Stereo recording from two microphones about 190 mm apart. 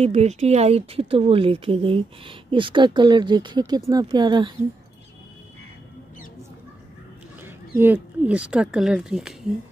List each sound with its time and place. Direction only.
0.0 s speech: 35° right (ahead or behind)
7.4 s speech: 10° right (ahead or behind)